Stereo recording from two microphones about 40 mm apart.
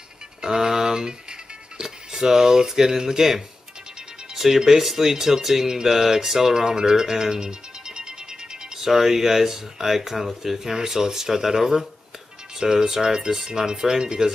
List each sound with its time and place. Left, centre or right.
0.4 s music: centre
1.8 s speech: centre